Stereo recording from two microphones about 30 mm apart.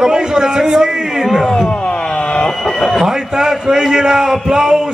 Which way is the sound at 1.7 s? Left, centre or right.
Left.